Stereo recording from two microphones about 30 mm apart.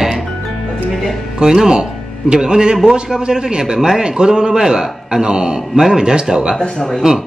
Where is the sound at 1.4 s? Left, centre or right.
Right.